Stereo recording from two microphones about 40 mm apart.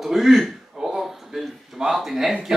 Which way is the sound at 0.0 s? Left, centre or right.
Centre.